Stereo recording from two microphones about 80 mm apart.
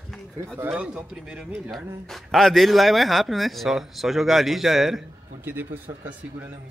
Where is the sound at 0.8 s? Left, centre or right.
Centre.